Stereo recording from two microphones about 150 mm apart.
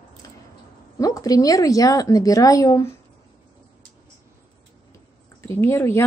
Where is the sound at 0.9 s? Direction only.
20° left (ahead or behind).